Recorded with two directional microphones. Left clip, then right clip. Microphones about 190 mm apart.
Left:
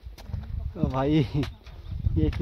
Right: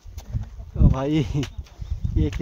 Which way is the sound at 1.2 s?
30° right (ahead or behind).